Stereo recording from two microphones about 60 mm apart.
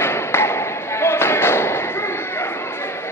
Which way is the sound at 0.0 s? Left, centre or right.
Left.